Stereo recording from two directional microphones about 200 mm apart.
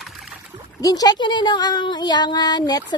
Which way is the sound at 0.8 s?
20° left (ahead or behind).